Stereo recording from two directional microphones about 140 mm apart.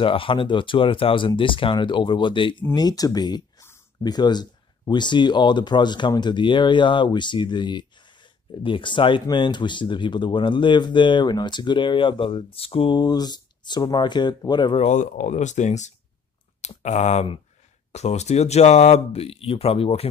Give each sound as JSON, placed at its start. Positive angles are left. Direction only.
{"t": 0.0, "sound": "speech", "side_deg": 40}
{"t": 14.8, "sound": "speech", "side_deg": 60}